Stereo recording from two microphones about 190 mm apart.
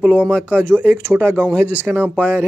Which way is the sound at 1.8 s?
5° right (ahead or behind).